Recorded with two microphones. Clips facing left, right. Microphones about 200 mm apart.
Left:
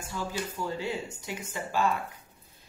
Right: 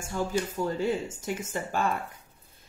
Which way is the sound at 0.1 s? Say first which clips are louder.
Right 6 dB; 50° right (ahead or behind).